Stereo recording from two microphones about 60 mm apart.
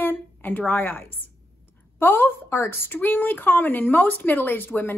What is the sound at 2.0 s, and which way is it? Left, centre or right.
A woman's voice, left.